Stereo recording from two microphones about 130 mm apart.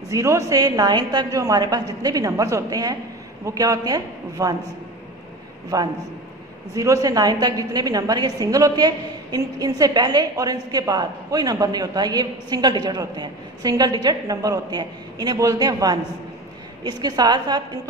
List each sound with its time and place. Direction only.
0.1 s a woman's voice: 25° right (ahead or behind)
5.7 s a woman's voice: 25° right (ahead or behind)